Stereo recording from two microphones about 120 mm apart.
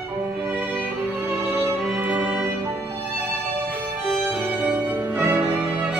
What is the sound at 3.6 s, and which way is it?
Music, 10° right (ahead or behind).